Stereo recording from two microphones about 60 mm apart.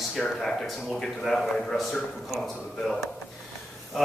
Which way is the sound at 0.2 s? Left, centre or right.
Centre.